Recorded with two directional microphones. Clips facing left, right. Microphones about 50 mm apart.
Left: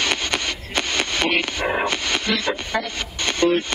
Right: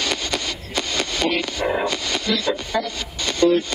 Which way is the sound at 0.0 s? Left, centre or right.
Left.